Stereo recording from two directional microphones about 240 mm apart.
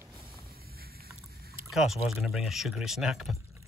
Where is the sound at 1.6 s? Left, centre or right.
Centre.